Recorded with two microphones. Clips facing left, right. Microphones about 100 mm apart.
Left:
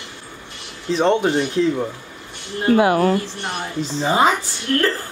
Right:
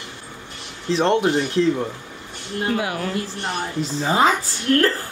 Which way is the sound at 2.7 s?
50° left (ahead or behind).